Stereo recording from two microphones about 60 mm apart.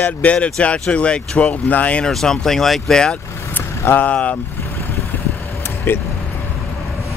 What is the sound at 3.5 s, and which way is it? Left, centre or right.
Vehicle, left.